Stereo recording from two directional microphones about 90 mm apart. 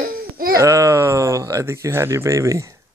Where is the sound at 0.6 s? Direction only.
35° right (ahead or behind).